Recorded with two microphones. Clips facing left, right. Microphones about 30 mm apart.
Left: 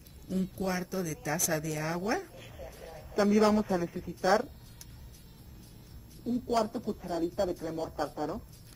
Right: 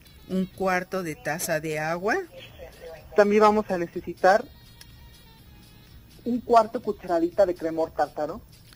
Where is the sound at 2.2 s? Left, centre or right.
Right.